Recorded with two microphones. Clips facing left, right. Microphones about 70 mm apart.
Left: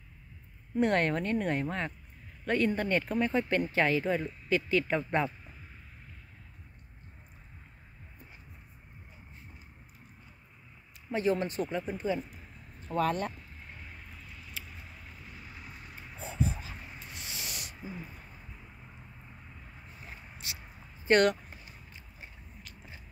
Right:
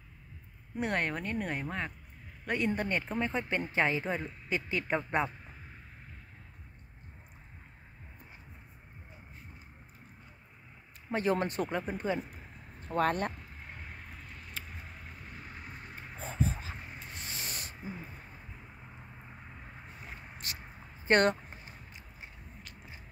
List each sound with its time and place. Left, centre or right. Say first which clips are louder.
0.7 s speech: left 5 dB; centre
2.4 s speech: left 3 dB; centre
11.1 s speech: left 1 dB; right
12.8 s a sound: even; right
15.0 s vehicle: right 2 dB; right
16.7 s a sound: right 1 dB; right
18.9 s vehicle: right 2 dB; right
20.2 s a sound: right 1 dB; right
21.0 s speech: left 2 dB; right